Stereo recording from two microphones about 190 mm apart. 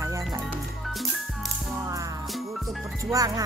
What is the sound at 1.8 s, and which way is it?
Music, 15° right (ahead or behind).